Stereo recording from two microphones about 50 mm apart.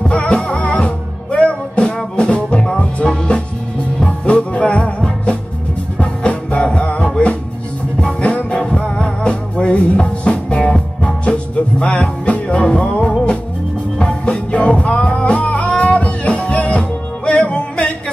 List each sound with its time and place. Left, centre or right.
0.0 s music: left